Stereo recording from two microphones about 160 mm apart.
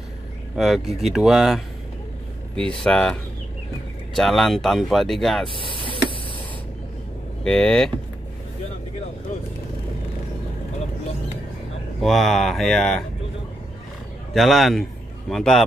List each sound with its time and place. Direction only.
0.6 s speech: centre (ahead or behind)
2.8 s speech: 5° left (ahead or behind)
5.5 s speech: 30° left (ahead or behind)
7.4 s speech: 5° left (ahead or behind)
12.0 s speech: centre (ahead or behind)
14.3 s a man's voice: centre (ahead or behind)